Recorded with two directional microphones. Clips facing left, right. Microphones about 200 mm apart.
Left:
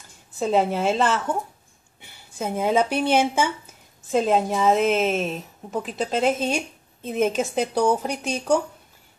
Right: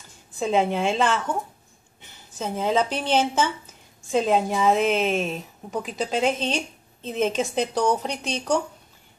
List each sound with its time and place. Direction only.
0.4 s a woman's voice: centre (ahead or behind)